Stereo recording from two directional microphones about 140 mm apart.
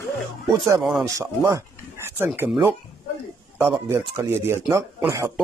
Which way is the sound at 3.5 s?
15° right (ahead or behind).